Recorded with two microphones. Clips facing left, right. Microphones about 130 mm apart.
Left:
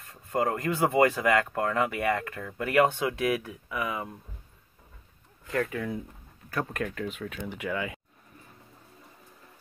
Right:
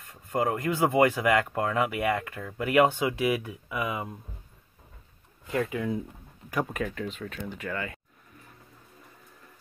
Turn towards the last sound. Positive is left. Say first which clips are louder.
# left 2 dB
turn(degrees=10)  # may be behind; listen again after turning